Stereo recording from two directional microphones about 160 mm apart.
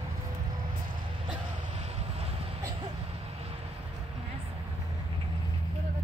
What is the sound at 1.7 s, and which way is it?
Vehicle, 40° right (ahead or behind).